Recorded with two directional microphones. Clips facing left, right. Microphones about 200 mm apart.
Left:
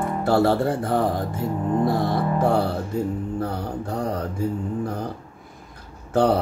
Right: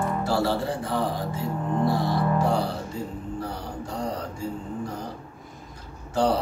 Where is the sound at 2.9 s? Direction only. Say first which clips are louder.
Left 7 dB; 60° left (ahead or behind).